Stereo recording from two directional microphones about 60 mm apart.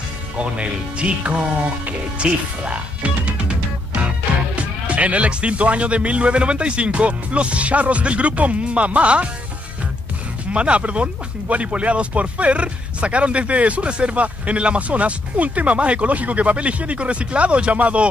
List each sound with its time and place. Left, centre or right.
0.4 s speech: centre
1.9 s music: centre
4.6 s speech: right
10.5 s speech: centre